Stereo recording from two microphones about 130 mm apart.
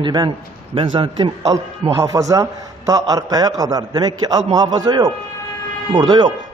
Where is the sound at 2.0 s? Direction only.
25° right (ahead or behind).